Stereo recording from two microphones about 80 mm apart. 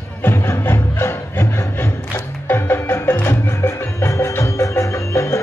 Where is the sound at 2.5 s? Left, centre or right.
Left.